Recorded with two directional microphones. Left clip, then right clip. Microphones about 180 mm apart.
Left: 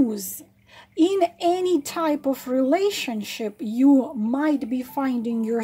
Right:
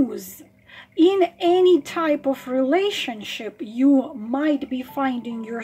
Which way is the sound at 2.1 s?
50° left (ahead or behind).